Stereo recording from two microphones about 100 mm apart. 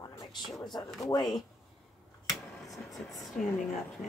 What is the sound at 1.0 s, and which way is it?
Speech, 35° left (ahead or behind).